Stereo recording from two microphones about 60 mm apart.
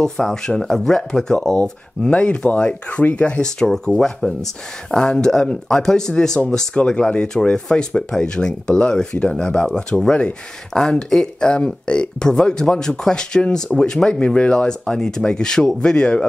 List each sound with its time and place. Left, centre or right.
0.0 s speech: centre
3.4 s speech: centre